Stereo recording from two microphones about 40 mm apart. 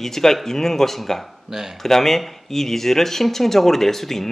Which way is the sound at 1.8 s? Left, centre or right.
Centre.